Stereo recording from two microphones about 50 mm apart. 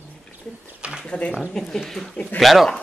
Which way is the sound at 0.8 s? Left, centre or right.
Centre.